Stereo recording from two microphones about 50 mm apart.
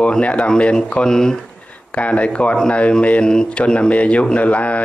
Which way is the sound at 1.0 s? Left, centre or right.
Centre.